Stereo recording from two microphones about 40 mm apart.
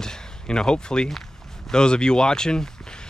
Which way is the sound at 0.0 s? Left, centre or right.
Centre.